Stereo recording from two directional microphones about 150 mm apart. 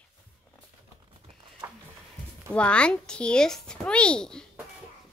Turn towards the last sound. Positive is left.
turn(degrees=5)  # may be behind; listen again after turning